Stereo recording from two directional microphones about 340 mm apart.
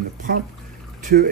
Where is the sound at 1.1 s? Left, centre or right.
Right.